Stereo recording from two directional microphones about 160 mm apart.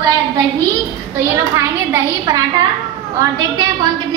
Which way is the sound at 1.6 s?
20° right (ahead or behind).